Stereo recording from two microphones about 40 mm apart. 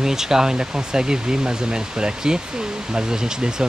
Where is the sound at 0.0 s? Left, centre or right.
Centre.